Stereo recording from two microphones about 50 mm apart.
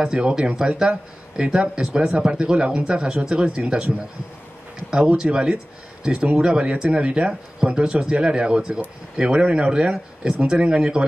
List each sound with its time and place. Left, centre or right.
0.0 s speech: centre
4.9 s speech: centre